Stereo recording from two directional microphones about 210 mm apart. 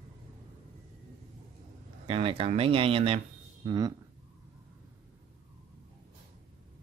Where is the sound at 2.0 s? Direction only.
25° right (ahead or behind).